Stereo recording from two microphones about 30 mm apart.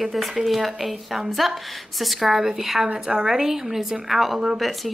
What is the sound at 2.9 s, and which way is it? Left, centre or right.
Speech, right.